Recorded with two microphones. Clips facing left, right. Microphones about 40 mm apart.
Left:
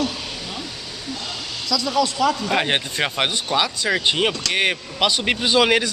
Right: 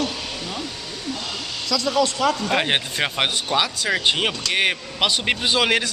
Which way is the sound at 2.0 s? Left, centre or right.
Right.